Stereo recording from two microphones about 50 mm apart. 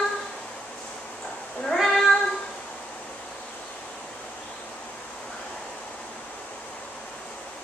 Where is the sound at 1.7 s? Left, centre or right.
Centre.